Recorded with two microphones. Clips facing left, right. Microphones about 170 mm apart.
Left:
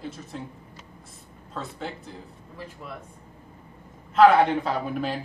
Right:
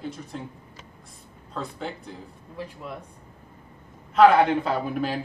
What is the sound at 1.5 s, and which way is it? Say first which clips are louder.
Speech: right 1 dB; centre (ahead or behind).